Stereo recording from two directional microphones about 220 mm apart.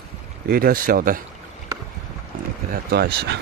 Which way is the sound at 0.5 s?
40° right (ahead or behind).